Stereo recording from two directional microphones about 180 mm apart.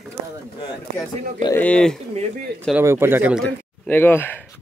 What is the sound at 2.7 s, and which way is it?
Speech, 10° right (ahead or behind).